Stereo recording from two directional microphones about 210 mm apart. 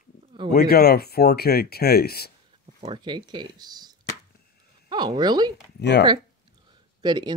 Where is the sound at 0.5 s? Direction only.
45° left (ahead or behind).